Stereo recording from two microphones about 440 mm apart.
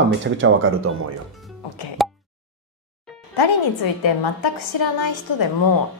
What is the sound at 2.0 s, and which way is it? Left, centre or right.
Plop, centre.